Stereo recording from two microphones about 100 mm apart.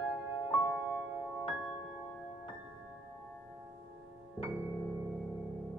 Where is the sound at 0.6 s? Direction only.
15° right (ahead or behind).